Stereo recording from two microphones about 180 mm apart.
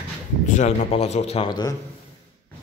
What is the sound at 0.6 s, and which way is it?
A man's voice, 35° left (ahead or behind).